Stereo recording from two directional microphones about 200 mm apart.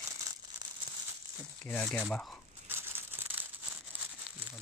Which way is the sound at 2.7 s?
10° right (ahead or behind).